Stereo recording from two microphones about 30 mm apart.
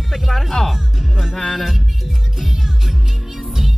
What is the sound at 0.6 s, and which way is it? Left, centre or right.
Speech, left.